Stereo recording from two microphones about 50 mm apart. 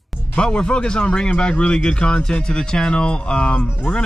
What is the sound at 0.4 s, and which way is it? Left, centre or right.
Speech, centre.